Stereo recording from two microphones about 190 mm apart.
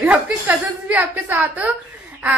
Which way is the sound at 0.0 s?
5° right (ahead or behind).